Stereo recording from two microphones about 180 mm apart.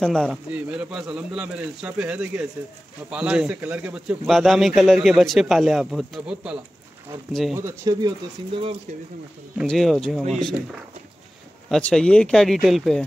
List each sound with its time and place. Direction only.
0.0 s a man's voice: 5° left (ahead or behind)
7.5 s speech: 15° right (ahead or behind)
9.6 s a man's voice: centre (ahead or behind)